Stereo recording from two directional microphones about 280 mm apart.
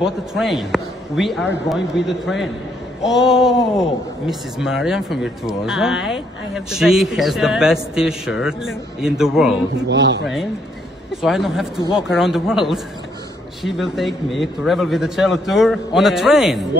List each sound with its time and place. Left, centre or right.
0.0 s speech: centre
9.8 s speech: right
11.1 s speech: centre